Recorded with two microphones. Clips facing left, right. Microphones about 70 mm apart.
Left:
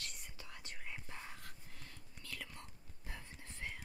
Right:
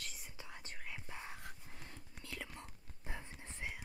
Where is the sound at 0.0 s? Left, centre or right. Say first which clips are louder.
Even; centre.